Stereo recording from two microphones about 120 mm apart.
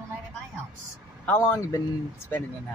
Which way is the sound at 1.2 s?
15° left (ahead or behind).